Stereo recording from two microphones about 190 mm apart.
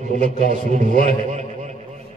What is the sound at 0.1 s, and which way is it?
A man's voice, 40° right (ahead or behind).